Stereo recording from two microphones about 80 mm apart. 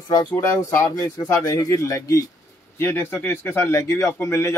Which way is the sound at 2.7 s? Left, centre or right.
Left.